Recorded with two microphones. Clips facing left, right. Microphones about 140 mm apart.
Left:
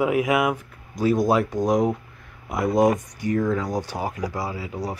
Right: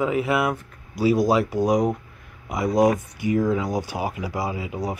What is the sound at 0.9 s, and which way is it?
Speech, 5° right (ahead or behind).